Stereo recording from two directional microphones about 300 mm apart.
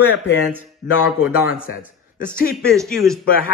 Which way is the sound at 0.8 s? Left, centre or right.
Left.